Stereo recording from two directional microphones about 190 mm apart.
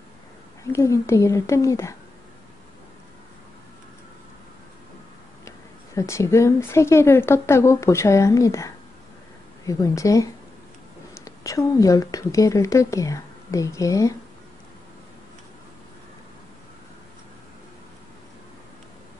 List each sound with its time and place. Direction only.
0.7 s a woman's voice: 15° left (ahead or behind)
5.9 s a woman's voice: 15° left (ahead or behind)